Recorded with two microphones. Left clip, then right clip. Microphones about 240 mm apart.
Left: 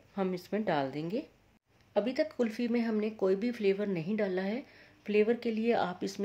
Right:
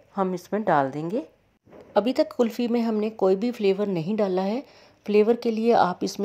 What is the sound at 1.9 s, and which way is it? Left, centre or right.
Speech, right.